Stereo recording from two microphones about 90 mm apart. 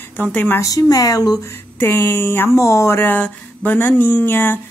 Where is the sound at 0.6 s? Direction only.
40° left (ahead or behind).